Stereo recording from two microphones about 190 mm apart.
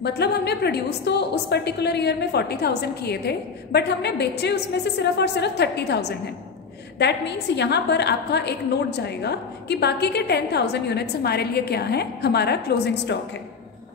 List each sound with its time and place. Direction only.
0.0 s a woman's voice: 60° left (ahead or behind)